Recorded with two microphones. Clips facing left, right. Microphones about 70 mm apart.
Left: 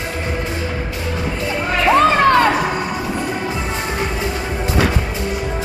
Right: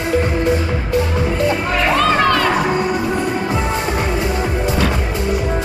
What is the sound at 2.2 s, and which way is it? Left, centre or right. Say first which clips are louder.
Music: left 3 dB; left.